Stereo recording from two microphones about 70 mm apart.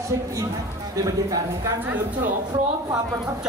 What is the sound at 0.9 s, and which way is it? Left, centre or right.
Speech, right.